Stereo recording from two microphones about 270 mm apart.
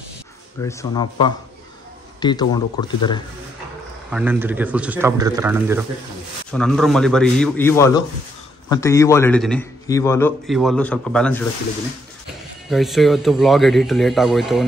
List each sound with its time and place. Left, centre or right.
0.6 s a man's voice: centre
4.1 s speech: centre
6.5 s a man's voice: centre
12.6 s speech: centre